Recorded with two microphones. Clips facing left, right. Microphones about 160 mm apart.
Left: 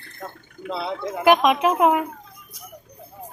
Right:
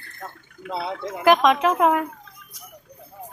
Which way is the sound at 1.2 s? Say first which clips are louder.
Even; 10° left (ahead or behind).